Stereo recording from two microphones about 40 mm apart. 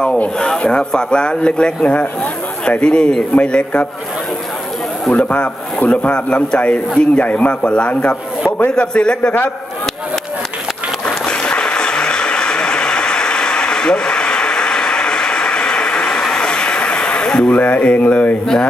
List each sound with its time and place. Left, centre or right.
0.6 s speech: left
3.3 s a man's voice: left
5.1 s a man's voice: left
6.1 s a man's voice: left
8.5 s a man's voice: left
8.7 s speech: left
11.1 s a sound: left
16.3 s vehicle: left
17.5 s a man's voice: left